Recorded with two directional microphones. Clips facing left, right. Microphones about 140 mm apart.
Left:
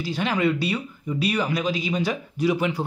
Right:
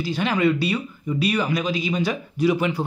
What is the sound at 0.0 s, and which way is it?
Speech, 30° left (ahead or behind).